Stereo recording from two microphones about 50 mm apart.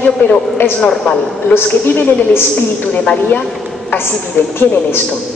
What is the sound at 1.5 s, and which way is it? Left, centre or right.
Speech, left.